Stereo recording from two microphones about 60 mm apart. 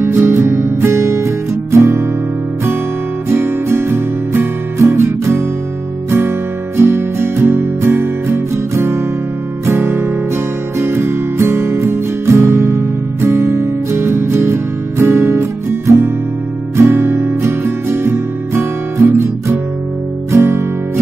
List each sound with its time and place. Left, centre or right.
0.0 s music: right
3.3 s music: right
20.2 s guitar: right